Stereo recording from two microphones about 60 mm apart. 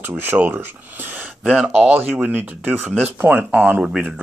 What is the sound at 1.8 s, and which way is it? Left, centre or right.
Speech, right.